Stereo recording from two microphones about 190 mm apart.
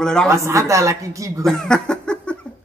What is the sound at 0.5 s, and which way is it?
Speech, 15° right (ahead or behind).